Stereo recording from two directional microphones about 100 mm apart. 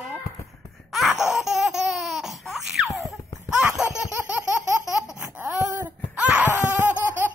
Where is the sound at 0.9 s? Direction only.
Centre (ahead or behind).